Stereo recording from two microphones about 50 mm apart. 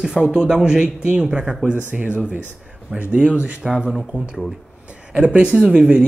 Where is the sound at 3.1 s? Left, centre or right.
Right.